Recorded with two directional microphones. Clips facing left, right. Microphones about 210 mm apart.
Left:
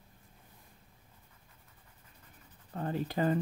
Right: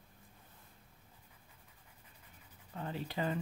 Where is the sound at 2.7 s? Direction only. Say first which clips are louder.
Left 6 dB; 45° left (ahead or behind).